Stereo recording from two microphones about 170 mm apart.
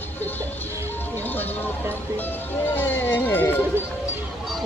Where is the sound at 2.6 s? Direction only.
10° left (ahead or behind).